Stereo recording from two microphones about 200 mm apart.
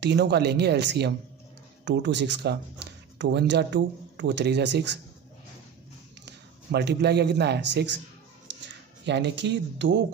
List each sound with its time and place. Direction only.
0.0 s speech: 55° right (ahead or behind)
6.2 s a man's voice: 55° right (ahead or behind)
8.5 s a sound: 65° right (ahead or behind)
9.0 s speech: 60° right (ahead or behind)